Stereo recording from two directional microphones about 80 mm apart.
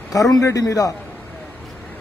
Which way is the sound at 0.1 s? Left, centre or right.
Left.